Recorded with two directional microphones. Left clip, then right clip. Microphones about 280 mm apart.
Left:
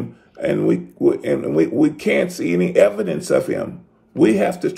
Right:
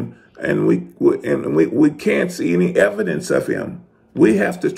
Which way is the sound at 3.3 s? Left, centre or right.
Centre.